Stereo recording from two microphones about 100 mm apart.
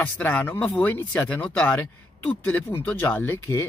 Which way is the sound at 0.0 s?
15° left (ahead or behind).